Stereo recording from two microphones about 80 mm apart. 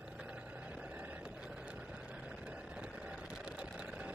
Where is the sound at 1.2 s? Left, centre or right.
Centre.